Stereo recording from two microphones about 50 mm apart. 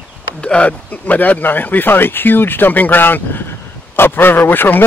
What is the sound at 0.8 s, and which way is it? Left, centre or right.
Speech, left.